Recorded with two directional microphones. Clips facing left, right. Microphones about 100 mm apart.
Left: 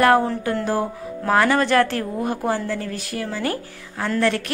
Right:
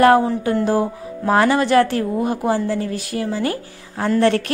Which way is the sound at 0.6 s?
15° right (ahead or behind).